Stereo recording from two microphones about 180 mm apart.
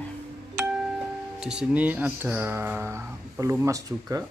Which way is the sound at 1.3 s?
5° right (ahead or behind).